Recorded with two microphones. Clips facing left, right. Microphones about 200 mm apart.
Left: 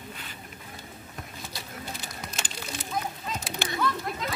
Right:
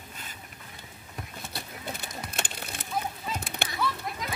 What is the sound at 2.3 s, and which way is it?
Music, 60° right (ahead or behind).